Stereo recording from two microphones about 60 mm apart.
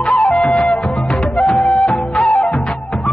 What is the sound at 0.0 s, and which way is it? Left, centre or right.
Flute, centre.